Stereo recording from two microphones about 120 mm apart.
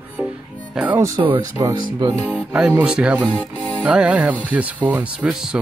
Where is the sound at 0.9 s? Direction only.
25° right (ahead or behind).